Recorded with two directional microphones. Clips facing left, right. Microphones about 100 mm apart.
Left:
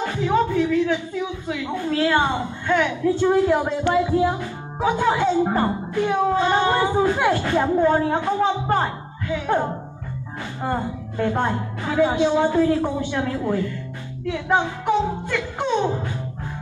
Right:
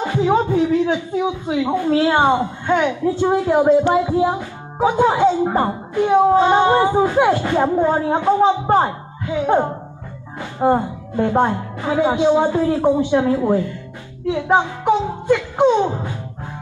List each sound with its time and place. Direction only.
0.2 s a sound: 35° right (ahead or behind)
1.5 s speech: 30° right (ahead or behind)
14.2 s music: 25° right (ahead or behind)